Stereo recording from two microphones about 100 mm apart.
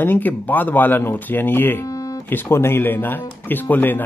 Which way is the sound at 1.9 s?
35° left (ahead or behind).